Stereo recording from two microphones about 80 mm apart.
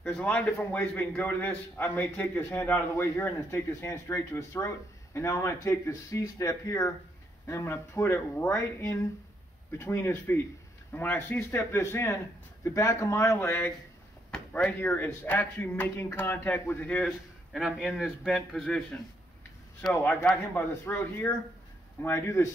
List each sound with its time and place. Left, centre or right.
0.1 s a man's voice: centre; by 6.9 s left
7.4 s a man's voice: left
17.6 s a man's voice: centre
19.9 s a man's voice: left